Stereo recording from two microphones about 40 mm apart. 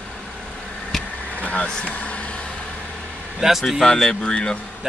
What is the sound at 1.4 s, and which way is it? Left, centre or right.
Vehicle, left.